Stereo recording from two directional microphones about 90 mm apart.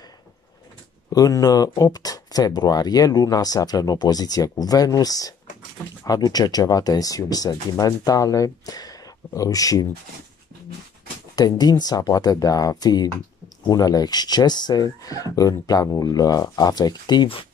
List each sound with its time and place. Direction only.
1.1 s speech: 40° left (ahead or behind)
11.3 s speech: 45° left (ahead or behind)